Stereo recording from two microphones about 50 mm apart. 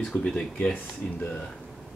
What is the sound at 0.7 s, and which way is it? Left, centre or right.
Speech, left.